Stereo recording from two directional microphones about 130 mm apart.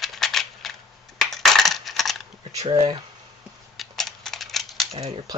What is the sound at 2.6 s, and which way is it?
Speech, 35° right (ahead or behind).